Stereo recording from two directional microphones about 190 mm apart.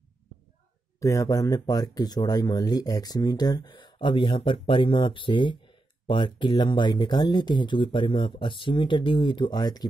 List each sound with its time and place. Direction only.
0.9 s speech: 15° left (ahead or behind)